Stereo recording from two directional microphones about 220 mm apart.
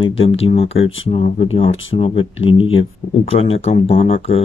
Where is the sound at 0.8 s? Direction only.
65° left (ahead or behind).